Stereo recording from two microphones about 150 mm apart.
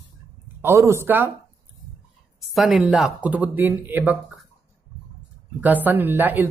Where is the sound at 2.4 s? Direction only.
Centre (ahead or behind).